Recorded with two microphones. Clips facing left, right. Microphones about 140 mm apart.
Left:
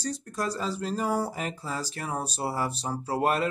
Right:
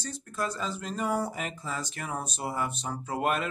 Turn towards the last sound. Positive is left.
turn(degrees=35)  # may be behind; listen again after turning